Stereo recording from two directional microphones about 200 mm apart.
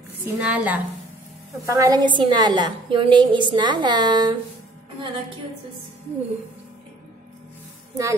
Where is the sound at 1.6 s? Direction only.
20° right (ahead or behind).